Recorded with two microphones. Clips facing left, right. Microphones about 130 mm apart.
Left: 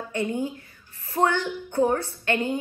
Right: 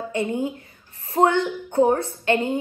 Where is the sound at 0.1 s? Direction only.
25° right (ahead or behind).